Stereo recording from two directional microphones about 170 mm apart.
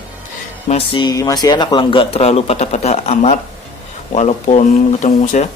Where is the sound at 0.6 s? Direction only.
35° left (ahead or behind).